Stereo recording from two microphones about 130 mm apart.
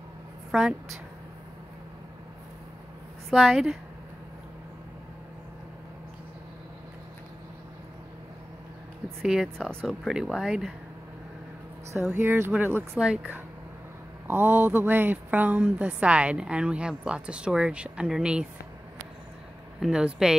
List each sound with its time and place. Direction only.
0.5 s speech: 5° right (ahead or behind)
3.3 s speech: centre (ahead or behind)
9.2 s speech: 5° right (ahead or behind)
9.6 s speech: 5° left (ahead or behind)
11.9 s a woman's voice: 15° right (ahead or behind)
19.8 s speech: 5° right (ahead or behind)